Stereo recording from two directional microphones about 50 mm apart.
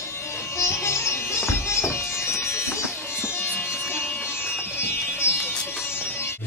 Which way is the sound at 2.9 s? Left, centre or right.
Left.